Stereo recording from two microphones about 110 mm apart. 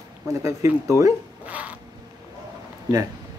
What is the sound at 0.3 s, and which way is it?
Speech, 25° right (ahead or behind).